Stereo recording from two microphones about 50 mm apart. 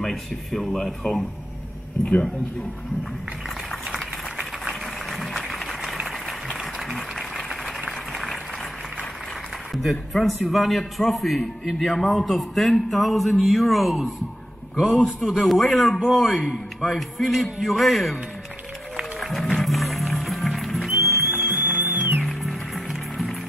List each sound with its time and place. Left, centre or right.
0.0 s a man's voice: centre
5.1 s a sound: centre
9.7 s a man's voice: centre
15.0 s a man's voice: centre
19.1 s music: centre
21.3 s music: left
21.9 s music: right
22.3 s music: centre